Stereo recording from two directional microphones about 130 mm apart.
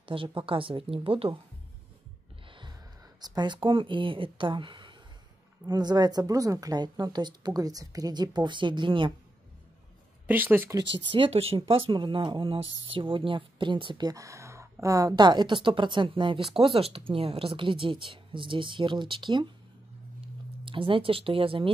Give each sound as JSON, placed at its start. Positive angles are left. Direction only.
{"t": 0.0, "sound": "speech", "side_deg": -40}
{"t": 2.4, "sound": "gasp", "side_deg": -40}
{"t": 3.2, "sound": "a woman's voice", "side_deg": -30}
{"t": 10.2, "sound": "speech", "side_deg": -15}
{"t": 10.8, "sound": "a woman's voice", "side_deg": -40}
{"t": 20.2, "sound": "a sound", "side_deg": -40}